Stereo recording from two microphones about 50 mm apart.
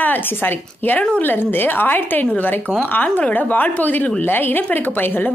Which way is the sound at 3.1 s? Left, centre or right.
Left.